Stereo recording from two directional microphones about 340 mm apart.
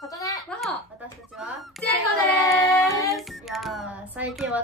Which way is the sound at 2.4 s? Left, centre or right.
Centre.